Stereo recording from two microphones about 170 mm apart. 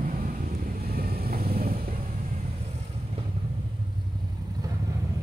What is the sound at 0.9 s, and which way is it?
Vehicle, 65° right (ahead or behind).